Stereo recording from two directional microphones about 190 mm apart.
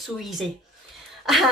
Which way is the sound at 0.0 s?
Centre (ahead or behind).